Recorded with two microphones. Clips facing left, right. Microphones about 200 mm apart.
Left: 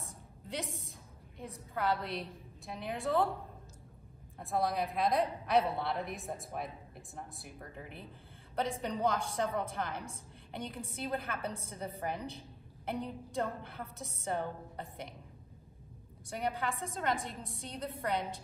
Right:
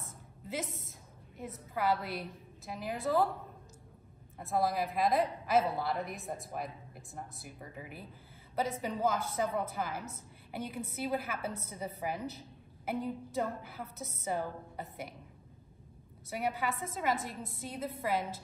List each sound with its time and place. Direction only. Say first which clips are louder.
0.0 s a sound: right 1 dB; centre (ahead or behind)
1.4 s a woman's voice: right 2 dB; 5° right (ahead or behind)
4.4 s a woman's voice: right 1 dB; centre (ahead or behind)
16.3 s a woman's voice: right 1 dB; 5° right (ahead or behind)